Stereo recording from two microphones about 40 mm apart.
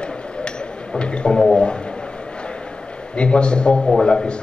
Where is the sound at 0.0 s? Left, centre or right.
Left.